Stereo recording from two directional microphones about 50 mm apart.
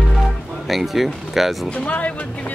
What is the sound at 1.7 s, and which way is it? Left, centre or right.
Speech, left.